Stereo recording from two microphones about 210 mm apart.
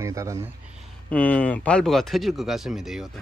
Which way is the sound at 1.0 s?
5° left (ahead or behind).